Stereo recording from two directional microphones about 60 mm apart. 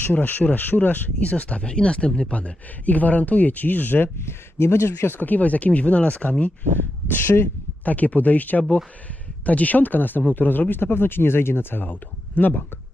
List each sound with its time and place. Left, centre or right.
0.0 s speech: left
4.2 s speech: left
7.1 s speech: left